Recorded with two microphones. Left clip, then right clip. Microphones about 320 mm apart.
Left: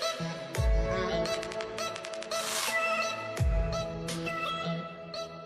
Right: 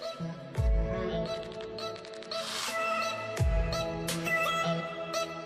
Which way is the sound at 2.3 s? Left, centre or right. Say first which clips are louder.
Left 2 dB; centre.